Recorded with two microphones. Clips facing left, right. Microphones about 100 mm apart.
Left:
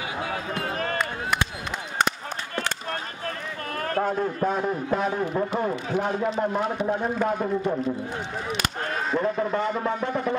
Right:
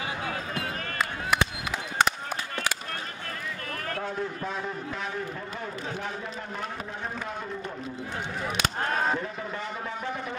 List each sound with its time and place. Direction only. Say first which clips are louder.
3.8 s a man's voice: left 8 dB; 45° left (ahead or behind)
9.2 s a man's voice: left 10 dB; 55° left (ahead or behind)